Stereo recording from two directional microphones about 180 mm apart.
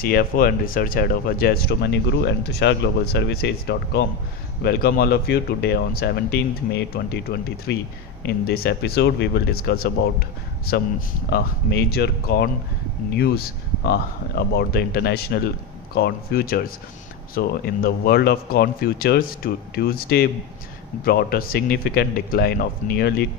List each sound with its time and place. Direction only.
0.0 s speech: 55° left (ahead or behind)